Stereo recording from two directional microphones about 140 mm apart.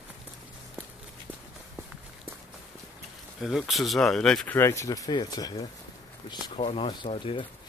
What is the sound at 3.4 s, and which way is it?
Speech, centre (ahead or behind).